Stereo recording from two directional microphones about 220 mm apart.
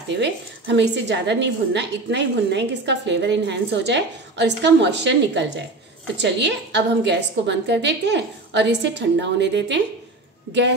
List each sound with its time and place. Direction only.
0.1 s a woman's voice: 55° right (ahead or behind)